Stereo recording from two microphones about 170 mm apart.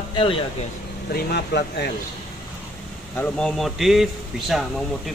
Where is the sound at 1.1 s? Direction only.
75° left (ahead or behind).